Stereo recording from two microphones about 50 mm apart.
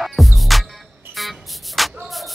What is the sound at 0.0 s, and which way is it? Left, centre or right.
Music, centre.